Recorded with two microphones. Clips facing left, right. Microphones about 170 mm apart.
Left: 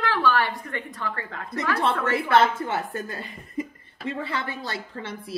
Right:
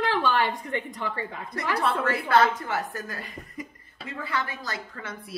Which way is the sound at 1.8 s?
25° left (ahead or behind).